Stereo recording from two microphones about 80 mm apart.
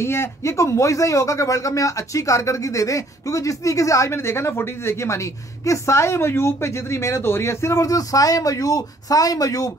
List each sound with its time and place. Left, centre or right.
0.0 s speech: left